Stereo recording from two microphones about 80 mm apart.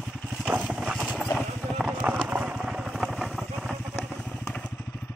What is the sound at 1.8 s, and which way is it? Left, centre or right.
Clip-clop, centre.